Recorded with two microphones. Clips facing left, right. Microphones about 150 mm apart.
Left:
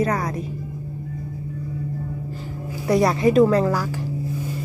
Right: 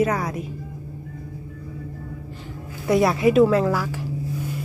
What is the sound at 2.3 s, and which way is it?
A woman's voice, centre (ahead or behind).